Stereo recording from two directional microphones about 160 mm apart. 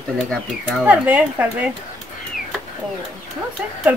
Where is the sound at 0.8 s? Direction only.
10° right (ahead or behind).